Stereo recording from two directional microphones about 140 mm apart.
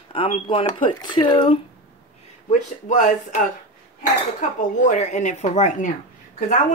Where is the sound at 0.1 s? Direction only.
40° left (ahead or behind).